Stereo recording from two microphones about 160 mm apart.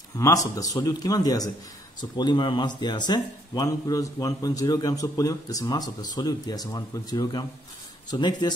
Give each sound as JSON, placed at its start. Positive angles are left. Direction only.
{"t": 0.2, "sound": "speech", "side_deg": 20}